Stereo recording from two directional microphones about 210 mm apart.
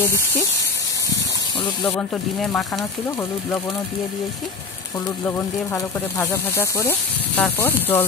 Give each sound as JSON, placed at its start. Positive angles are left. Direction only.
{"t": 0.0, "sound": "speech", "side_deg": 10}
{"t": 1.8, "sound": "speech", "side_deg": 5}
{"t": 5.2, "sound": "speech", "side_deg": 10}